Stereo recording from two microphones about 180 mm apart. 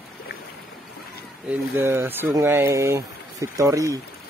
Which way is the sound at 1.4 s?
10° right (ahead or behind).